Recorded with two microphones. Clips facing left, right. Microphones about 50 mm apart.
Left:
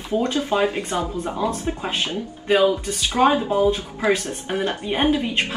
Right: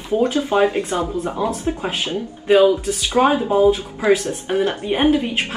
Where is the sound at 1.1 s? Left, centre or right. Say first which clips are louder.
Right 3 dB; centre.